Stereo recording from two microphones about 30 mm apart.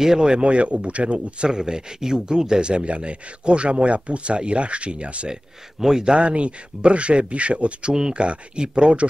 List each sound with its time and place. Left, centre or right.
0.2 s speech: right
1.5 s speech: right
5.8 s a man's voice: centre
6.0 s speech: right
7.9 s speech: right
8.2 s speech: right